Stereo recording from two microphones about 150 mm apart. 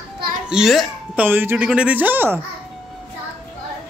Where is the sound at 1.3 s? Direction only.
15° right (ahead or behind).